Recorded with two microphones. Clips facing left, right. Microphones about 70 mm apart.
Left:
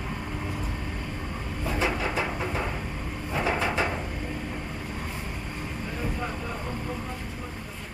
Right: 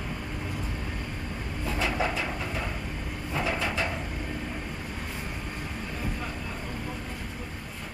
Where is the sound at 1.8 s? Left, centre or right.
Left.